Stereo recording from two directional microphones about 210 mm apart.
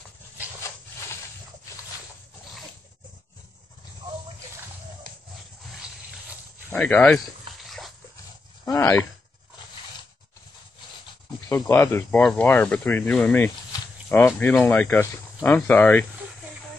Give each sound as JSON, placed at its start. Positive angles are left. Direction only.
{"t": 5.7, "sound": "a sound", "side_deg": -5}
{"t": 8.6, "sound": "speech", "side_deg": 15}
{"t": 11.6, "sound": "speech", "side_deg": 10}